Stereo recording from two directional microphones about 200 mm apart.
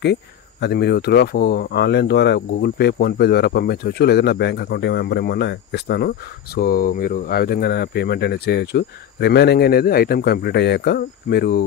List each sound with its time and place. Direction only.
0.0 s speech: 55° left (ahead or behind)